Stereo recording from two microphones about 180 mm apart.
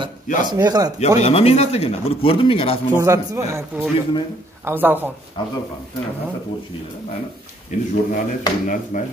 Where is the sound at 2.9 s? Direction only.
20° right (ahead or behind).